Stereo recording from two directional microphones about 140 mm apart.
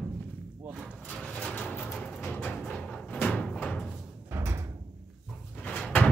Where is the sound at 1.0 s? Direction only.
5° left (ahead or behind).